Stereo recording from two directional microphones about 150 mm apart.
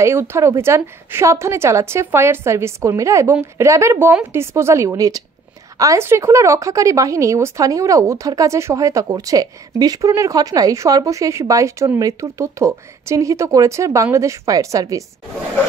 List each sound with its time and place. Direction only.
0.0 s a woman's voice: 15° right (ahead or behind)